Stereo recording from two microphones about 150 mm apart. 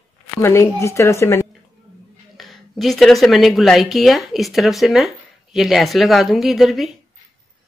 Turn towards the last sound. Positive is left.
turn(degrees=0)  # may be behind; listen again after turning